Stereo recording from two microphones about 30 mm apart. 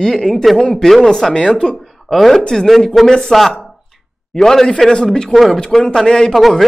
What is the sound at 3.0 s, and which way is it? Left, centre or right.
Speech, centre.